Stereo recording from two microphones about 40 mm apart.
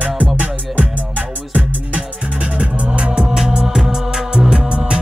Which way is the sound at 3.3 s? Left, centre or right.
Centre.